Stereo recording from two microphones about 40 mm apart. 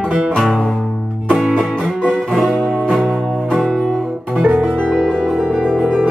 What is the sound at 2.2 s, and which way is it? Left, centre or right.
Music, centre.